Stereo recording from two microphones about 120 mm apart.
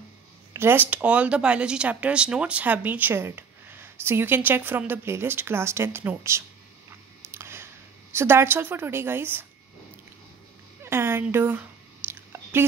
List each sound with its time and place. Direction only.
0.5 s speech: 20° right (ahead or behind)
7.2 s a sound: 20° right (ahead or behind)
8.1 s a woman's voice: 20° right (ahead or behind)
10.8 s speech: 20° right (ahead or behind)
12.1 s chewing: 20° right (ahead or behind)